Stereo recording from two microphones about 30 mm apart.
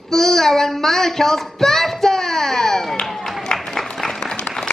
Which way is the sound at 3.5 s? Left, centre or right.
Left.